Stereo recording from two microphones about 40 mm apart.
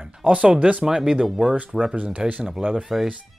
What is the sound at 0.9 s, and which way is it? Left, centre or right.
Speech, centre.